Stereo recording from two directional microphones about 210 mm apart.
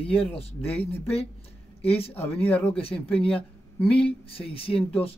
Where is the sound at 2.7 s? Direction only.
25° left (ahead or behind).